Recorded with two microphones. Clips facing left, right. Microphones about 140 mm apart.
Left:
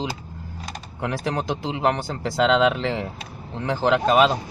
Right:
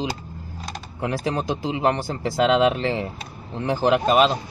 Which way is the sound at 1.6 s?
5° right (ahead or behind).